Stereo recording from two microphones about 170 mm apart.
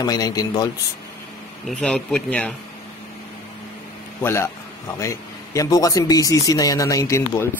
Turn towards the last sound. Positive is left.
turn(degrees=15)  # may be behind; listen again after turning